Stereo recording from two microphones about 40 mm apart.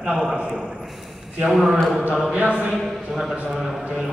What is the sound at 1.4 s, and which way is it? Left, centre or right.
Speech, centre.